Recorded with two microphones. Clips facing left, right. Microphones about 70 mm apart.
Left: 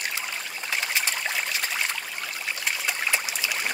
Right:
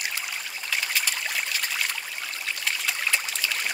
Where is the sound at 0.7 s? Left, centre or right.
Left.